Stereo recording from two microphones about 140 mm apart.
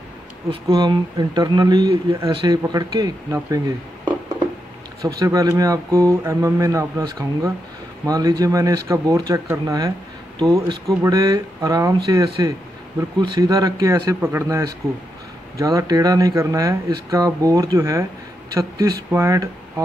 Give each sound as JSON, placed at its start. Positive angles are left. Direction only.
{"t": 0.5, "sound": "speech", "side_deg": -30}
{"t": 5.0, "sound": "speech", "side_deg": -25}